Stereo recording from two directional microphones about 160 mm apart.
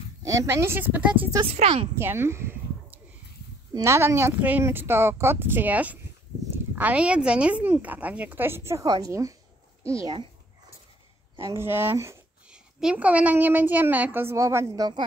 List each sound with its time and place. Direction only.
0.2 s speech: 20° right (ahead or behind)
1.5 s a woman's voice: 40° right (ahead or behind)
2.0 s a sound: 15° right (ahead or behind)
3.7 s speech: 15° right (ahead or behind)
11.3 s speech: 15° right (ahead or behind)